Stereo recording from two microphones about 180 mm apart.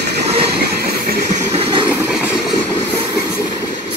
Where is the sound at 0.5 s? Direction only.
60° right (ahead or behind).